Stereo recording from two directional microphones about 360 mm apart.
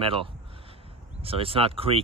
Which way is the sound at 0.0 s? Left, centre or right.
Centre.